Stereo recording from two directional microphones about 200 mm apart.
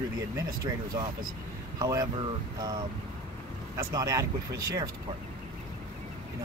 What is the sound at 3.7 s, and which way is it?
Speech, 15° right (ahead or behind).